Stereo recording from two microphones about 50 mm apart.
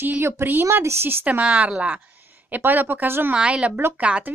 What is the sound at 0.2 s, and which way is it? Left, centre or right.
Speech, right.